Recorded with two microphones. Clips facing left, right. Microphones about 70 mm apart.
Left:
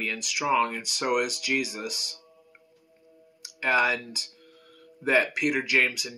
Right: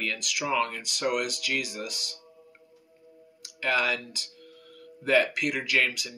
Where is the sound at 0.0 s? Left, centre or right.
Centre.